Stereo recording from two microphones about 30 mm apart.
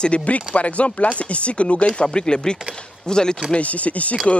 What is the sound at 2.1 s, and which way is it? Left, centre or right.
Speech, left.